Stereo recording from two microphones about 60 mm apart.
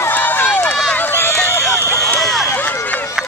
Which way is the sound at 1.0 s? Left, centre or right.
Left.